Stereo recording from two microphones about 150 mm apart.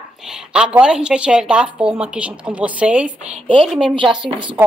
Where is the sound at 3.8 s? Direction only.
35° right (ahead or behind).